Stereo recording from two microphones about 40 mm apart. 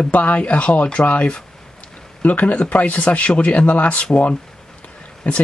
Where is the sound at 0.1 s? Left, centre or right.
Left.